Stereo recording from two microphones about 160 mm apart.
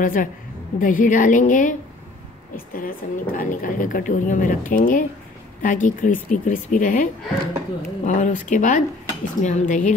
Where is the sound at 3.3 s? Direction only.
60° left (ahead or behind).